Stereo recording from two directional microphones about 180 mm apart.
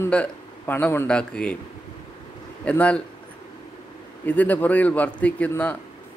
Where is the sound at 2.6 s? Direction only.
5° left (ahead or behind).